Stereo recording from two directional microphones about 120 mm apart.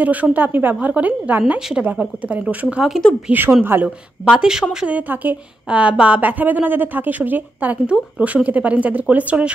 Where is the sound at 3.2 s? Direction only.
15° right (ahead or behind).